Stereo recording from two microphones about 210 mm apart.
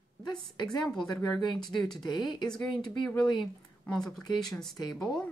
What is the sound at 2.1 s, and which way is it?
Speech, 20° left (ahead or behind).